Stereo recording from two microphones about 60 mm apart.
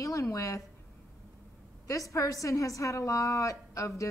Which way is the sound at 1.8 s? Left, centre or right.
Left.